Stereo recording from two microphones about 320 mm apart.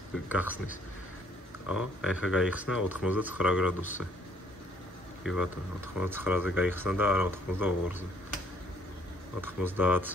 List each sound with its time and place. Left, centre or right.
0.3 s speech: centre
5.2 s speech: centre
9.4 s speech: centre